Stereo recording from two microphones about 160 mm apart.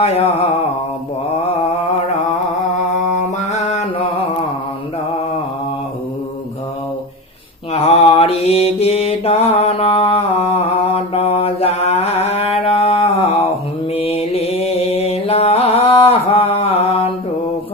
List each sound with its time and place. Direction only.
0.0 s mantra: 40° left (ahead or behind)
3.3 s music: 45° left (ahead or behind)
7.7 s mantra: 40° left (ahead or behind)